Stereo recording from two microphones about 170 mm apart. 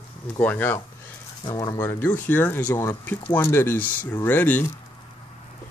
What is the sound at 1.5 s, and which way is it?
Speech, 25° left (ahead or behind).